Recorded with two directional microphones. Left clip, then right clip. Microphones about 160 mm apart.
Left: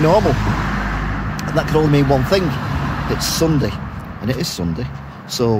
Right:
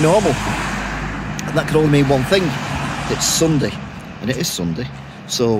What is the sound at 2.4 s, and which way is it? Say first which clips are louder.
Vehicle: right 1 dB; 55° right (ahead or behind).